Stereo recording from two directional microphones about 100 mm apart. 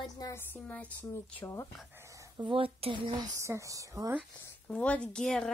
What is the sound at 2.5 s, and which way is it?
Speech, 65° right (ahead or behind).